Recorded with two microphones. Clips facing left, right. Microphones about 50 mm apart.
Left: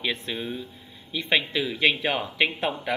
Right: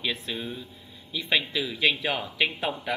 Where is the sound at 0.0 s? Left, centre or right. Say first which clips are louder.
Left 2 dB; centre.